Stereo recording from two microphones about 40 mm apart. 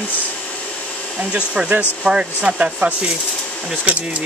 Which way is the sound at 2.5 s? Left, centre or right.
Right.